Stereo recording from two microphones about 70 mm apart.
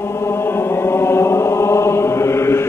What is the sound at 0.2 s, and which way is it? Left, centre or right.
Chant, left.